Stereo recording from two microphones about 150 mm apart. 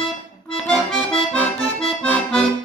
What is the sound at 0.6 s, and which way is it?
Accordion, 5° left (ahead or behind).